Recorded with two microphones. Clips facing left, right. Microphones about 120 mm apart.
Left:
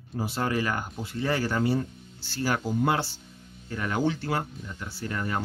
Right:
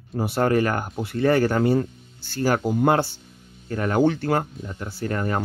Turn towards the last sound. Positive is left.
turn(degrees=-45)  # may be behind; listen again after turning